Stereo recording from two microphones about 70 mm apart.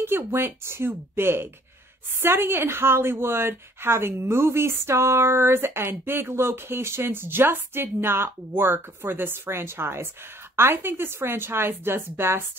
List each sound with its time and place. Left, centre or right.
0.0 s a woman's voice: right